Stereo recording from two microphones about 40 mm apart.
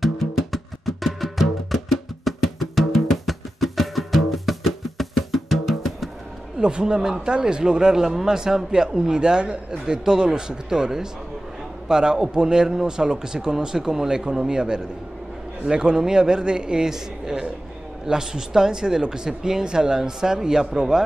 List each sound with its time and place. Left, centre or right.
0.0 s music: centre
6.6 s a man's voice: right